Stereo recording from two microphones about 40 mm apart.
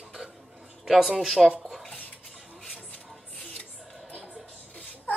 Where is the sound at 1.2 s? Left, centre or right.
Centre.